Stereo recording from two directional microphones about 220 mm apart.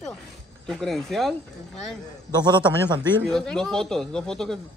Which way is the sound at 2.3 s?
20° right (ahead or behind).